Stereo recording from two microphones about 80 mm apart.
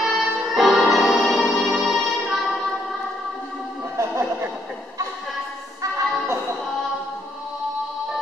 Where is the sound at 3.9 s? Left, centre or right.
Right.